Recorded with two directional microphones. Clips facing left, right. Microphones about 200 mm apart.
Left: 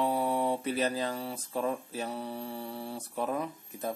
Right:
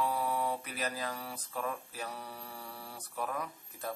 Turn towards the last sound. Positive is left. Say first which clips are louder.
# left 5 dB
turn(degrees=20)  # may be behind; listen again after turning